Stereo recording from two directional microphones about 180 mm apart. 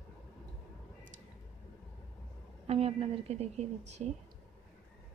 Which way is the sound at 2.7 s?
35° right (ahead or behind).